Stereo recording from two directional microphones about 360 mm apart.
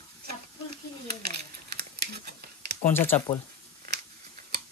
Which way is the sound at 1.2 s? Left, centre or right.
Right.